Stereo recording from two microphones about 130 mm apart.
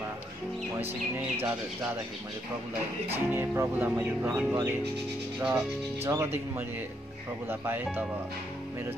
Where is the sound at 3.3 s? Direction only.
20° right (ahead or behind).